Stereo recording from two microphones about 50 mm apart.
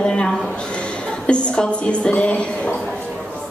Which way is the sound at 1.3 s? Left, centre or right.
Left.